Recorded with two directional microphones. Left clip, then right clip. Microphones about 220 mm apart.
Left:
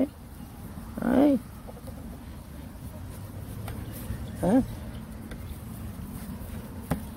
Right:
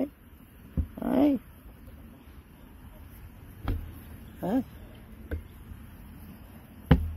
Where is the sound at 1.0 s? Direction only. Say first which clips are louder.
Left 3 dB; 35° right (ahead or behind).